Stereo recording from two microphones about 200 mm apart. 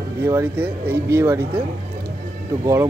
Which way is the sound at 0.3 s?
10° right (ahead or behind).